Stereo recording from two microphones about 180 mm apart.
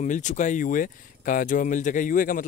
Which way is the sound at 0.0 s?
40° left (ahead or behind).